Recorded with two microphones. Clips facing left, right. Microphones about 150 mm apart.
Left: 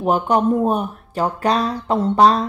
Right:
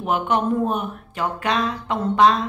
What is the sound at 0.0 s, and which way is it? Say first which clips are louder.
Speech: left 4 dB; 35° left (ahead or behind).